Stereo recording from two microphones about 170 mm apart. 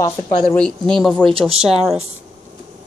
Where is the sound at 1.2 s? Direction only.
30° right (ahead or behind).